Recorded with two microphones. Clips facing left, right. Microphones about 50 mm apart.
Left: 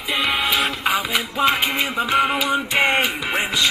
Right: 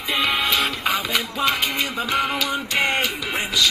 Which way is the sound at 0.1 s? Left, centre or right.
Centre.